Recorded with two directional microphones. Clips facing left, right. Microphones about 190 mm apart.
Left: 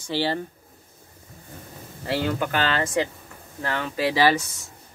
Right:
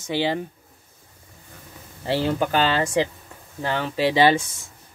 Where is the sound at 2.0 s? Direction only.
30° right (ahead or behind).